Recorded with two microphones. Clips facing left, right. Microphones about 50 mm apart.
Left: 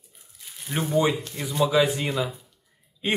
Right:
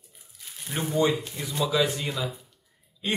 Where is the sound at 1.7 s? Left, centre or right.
Left.